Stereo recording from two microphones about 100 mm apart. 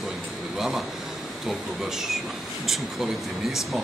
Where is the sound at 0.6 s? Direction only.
Centre (ahead or behind).